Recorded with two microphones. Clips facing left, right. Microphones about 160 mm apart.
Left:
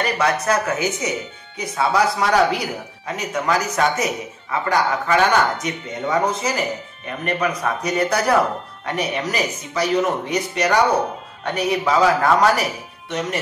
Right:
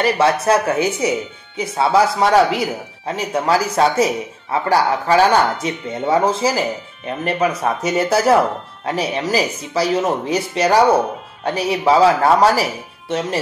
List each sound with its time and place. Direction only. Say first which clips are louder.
0.0 s speech: right 5 dB; 30° right (ahead or behind)